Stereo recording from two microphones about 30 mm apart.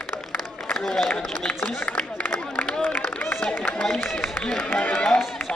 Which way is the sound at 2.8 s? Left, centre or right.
Left.